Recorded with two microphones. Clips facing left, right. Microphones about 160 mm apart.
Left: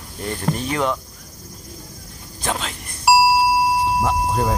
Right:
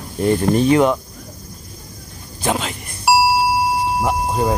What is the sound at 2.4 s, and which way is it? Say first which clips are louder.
Beep: right 5 dB; 5° right (ahead or behind).